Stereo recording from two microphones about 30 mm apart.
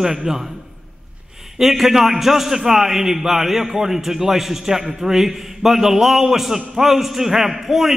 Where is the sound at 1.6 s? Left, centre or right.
Centre.